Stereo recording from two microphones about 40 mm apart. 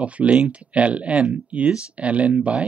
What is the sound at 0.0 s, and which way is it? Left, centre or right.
Speech, right.